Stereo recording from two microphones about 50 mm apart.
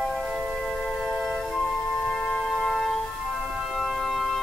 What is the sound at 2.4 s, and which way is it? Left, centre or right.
Music, centre.